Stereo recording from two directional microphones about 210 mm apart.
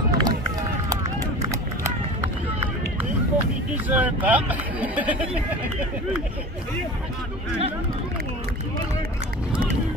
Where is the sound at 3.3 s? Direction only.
10° right (ahead or behind).